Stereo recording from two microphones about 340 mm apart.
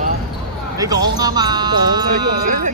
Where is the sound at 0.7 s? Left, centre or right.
Centre.